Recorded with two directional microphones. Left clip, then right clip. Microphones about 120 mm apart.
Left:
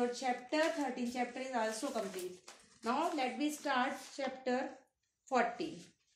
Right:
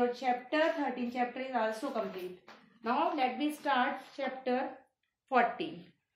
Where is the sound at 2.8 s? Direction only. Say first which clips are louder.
Right 5 dB; 30° left (ahead or behind).